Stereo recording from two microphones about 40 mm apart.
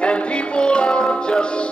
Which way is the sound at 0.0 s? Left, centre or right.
Left.